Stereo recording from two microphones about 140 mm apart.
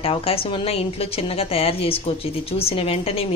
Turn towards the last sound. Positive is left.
turn(degrees=45)  # may be behind; listen again after turning